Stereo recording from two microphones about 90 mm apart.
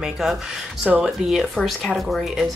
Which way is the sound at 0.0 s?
5° right (ahead or behind).